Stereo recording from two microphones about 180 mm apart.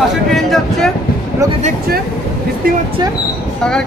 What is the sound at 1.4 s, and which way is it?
Speech, 20° right (ahead or behind).